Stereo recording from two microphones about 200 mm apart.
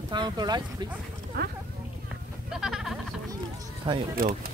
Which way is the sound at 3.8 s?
25° right (ahead or behind).